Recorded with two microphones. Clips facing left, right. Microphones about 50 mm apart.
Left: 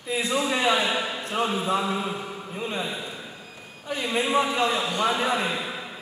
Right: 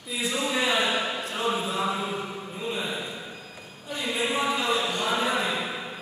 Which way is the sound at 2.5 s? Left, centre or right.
Left.